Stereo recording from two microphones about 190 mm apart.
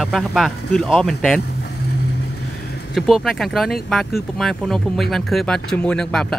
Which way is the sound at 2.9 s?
Centre (ahead or behind).